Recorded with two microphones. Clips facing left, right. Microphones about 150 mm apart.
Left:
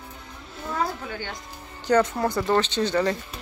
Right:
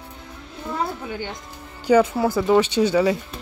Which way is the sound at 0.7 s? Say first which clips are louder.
Right 1 dB; 15° right (ahead or behind).